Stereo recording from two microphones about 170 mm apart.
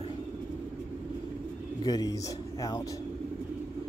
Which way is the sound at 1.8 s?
20° left (ahead or behind).